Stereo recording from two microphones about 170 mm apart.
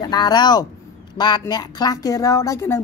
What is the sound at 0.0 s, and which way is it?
A woman's voice, 25° left (ahead or behind).